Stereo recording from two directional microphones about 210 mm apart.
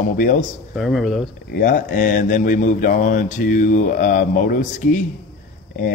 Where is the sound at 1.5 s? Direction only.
40° left (ahead or behind).